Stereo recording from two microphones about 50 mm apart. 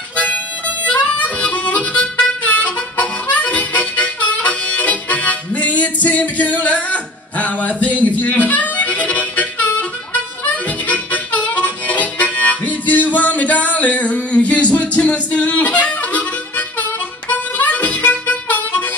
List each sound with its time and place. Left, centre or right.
0.1 s harmonica: left
8.0 s music: left
10.4 s harmonica: left